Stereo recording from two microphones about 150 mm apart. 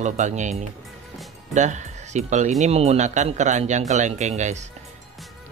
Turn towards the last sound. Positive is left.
turn(degrees=-50)  # may be behind; listen again after turning